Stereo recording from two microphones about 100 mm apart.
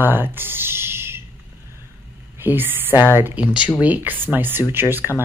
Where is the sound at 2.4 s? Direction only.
20° right (ahead or behind).